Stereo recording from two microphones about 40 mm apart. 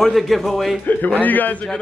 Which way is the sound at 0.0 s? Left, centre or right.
Centre.